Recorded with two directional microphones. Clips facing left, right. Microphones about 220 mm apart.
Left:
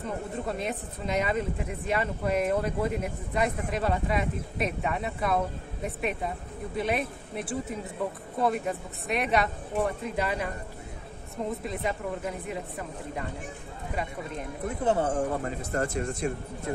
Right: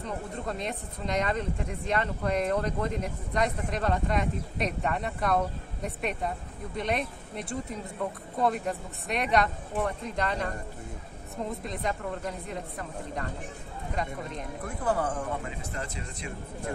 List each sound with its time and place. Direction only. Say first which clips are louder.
0.0 s speech: left 2 dB; 5° left (ahead or behind)
11.6 s speech: left 1 dB; 5° left (ahead or behind)
14.8 s speech: left 3 dB; 25° left (ahead or behind)
15.4 s speech: left 7 dB; 50° left (ahead or behind)